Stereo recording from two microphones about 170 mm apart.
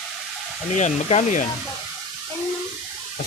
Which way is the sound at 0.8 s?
40° left (ahead or behind).